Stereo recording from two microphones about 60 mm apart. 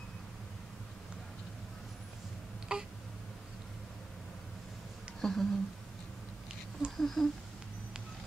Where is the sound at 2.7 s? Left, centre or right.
Centre.